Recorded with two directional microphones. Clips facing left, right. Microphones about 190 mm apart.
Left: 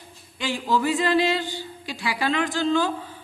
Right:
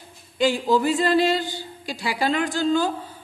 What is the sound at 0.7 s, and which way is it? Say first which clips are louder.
A woman's voice: left 2 dB; 35° right (ahead or behind).